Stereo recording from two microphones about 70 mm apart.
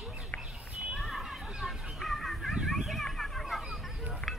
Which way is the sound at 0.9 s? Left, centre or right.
Centre.